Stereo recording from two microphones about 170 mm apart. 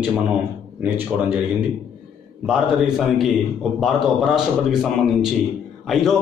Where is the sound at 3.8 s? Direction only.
Centre (ahead or behind).